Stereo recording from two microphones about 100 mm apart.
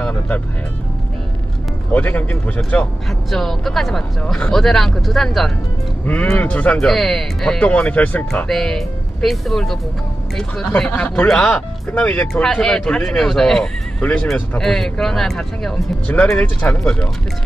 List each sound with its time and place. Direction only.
1.9 s speech: 15° left (ahead or behind)
3.3 s speech: 5° left (ahead or behind)
6.3 s speech: 15° left (ahead or behind)
8.5 s speech: 5° left (ahead or behind)